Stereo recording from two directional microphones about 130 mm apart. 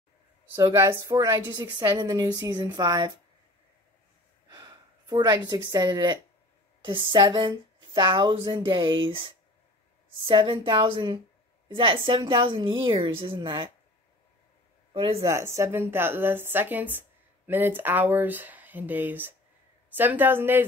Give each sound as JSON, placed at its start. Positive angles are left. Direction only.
{"t": 0.7, "sound": "a woman's voice", "side_deg": -25}
{"t": 4.5, "sound": "a sound", "side_deg": -30}
{"t": 5.5, "sound": "a woman's voice", "side_deg": -30}
{"t": 15.0, "sound": "speech", "side_deg": -50}
{"t": 15.2, "sound": "speech", "side_deg": -20}